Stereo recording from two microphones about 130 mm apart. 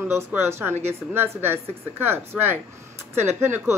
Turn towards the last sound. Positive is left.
turn(degrees=-20)  # may be behind; listen again after turning